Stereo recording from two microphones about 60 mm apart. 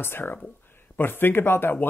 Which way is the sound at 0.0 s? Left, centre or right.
Left.